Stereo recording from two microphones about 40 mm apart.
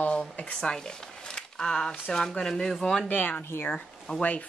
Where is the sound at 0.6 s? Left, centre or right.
Centre.